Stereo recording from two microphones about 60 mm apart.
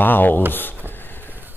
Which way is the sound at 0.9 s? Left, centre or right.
Left.